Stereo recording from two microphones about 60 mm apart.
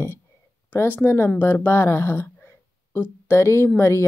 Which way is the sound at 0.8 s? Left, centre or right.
Left.